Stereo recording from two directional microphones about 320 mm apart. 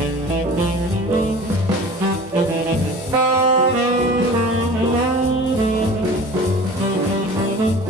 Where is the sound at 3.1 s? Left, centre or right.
Left.